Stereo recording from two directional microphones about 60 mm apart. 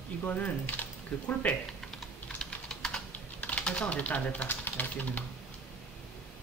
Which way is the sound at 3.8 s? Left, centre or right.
Left.